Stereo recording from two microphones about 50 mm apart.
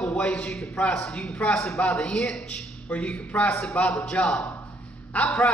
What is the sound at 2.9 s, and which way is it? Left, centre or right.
A man's voice, left.